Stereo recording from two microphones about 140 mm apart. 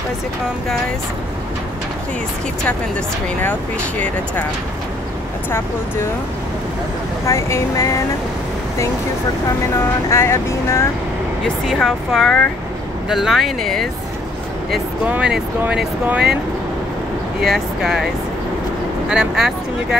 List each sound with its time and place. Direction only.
7.2 s speech: 20° left (ahead or behind)
10.0 s speech: 20° left (ahead or behind)
11.4 s speech: 5° left (ahead or behind)
15.0 s speech: 5° right (ahead or behind)
17.4 s speech: centre (ahead or behind)
19.0 s speech: 5° right (ahead or behind)